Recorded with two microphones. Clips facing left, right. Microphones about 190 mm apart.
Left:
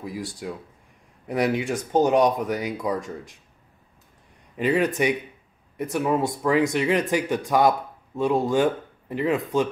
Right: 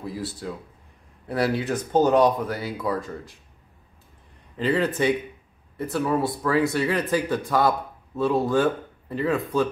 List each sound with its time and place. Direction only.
0.0 s speech: 15° left (ahead or behind)
4.6 s speech: 15° left (ahead or behind)